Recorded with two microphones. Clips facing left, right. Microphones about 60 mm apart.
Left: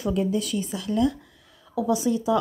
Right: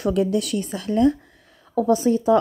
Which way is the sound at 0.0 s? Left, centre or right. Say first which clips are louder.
Right 4 dB; right.